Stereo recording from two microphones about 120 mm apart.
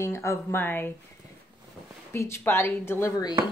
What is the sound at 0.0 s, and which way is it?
Speech, 25° left (ahead or behind).